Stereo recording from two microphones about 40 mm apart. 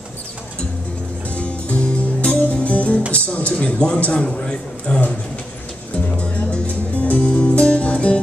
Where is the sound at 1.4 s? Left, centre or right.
Left.